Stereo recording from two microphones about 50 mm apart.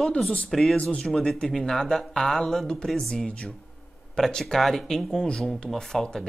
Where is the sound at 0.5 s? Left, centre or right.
Centre.